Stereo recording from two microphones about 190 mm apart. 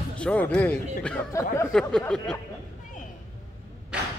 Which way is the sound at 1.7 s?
5° left (ahead or behind).